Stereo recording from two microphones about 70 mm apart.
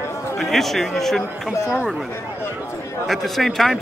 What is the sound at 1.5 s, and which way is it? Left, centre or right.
Speech, left.